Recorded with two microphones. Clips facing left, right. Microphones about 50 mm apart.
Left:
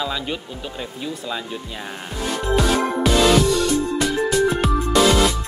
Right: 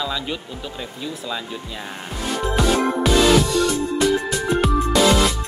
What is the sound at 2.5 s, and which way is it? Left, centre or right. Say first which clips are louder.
Music: even; centre.